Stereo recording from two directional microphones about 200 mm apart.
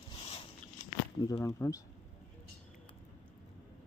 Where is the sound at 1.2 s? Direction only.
20° left (ahead or behind).